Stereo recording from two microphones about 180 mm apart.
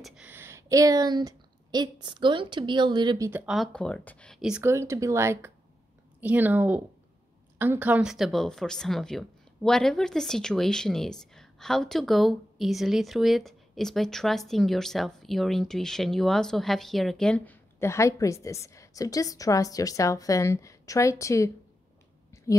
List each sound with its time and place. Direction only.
0.0 s speech: 5° right (ahead or behind); by 3.3 s 25° right (ahead or behind)
3.3 s speech: 10° right (ahead or behind)
3.5 s speech: 5° left (ahead or behind)
22.3 s a sound: 15° left (ahead or behind)